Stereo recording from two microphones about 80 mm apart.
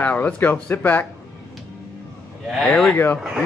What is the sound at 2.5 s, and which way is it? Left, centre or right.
Speech, centre.